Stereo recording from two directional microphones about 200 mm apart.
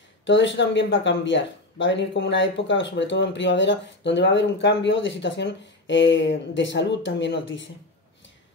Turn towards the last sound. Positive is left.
turn(degrees=65)  # may be behind; listen again after turning